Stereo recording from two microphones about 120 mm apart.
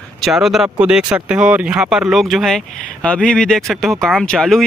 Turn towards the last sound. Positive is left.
turn(degrees=5)  # may be behind; listen again after turning